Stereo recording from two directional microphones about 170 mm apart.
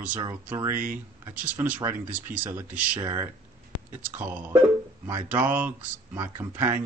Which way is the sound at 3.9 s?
10° right (ahead or behind).